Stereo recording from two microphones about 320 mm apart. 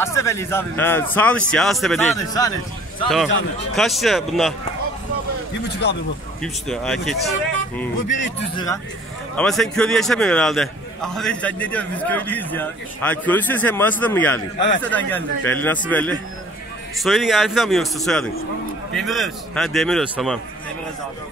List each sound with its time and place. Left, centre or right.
0.0 s a man's voice: centre
3.7 s a man's voice: centre
5.8 s speech: left
6.4 s a man's voice: centre
8.4 s a man's voice: centre
9.4 s a man's voice: centre